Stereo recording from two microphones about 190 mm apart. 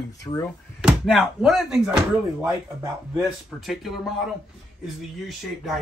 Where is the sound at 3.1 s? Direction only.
Centre (ahead or behind).